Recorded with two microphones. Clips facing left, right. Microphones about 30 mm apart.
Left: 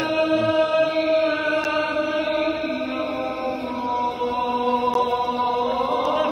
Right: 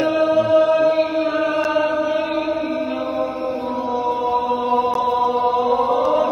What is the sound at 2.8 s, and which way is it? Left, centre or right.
Mantra, centre.